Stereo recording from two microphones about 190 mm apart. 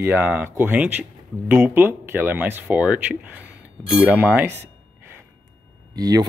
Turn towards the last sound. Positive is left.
turn(degrees=-20)  # may be behind; listen again after turning